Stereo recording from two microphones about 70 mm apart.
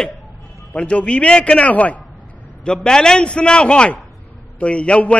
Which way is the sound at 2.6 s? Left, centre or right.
Centre.